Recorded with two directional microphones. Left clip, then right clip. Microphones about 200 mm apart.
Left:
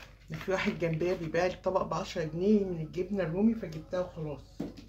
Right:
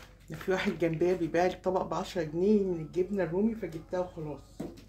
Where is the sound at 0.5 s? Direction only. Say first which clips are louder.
Right 1 dB; 25° right (ahead or behind).